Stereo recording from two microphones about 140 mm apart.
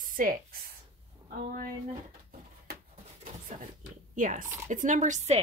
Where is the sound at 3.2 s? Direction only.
65° right (ahead or behind).